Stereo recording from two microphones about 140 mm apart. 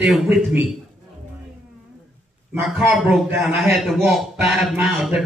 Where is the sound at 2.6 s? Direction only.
5° right (ahead or behind).